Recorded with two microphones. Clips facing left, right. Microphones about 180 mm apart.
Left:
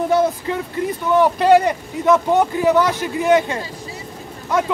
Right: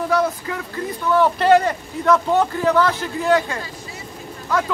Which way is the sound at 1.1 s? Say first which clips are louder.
Left 2 dB; 10° left (ahead or behind).